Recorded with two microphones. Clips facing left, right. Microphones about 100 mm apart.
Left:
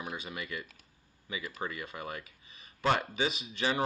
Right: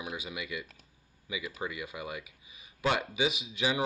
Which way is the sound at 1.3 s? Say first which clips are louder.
Right 1 dB; 5° right (ahead or behind).